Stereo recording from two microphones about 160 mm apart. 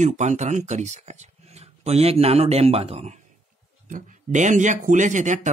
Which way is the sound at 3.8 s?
55° right (ahead or behind).